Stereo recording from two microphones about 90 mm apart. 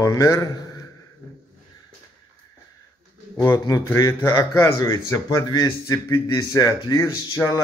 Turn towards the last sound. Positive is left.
turn(degrees=35)  # may be behind; listen again after turning